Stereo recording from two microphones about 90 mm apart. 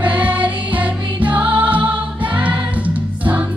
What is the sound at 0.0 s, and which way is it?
Music, 15° right (ahead or behind).